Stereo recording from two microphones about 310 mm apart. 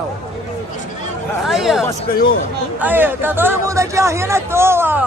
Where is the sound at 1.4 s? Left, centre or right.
Centre.